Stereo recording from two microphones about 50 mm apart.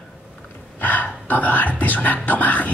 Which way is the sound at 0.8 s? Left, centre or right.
Left.